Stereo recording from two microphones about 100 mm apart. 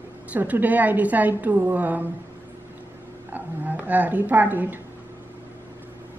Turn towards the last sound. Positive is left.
turn(degrees=-20)  # may be behind; listen again after turning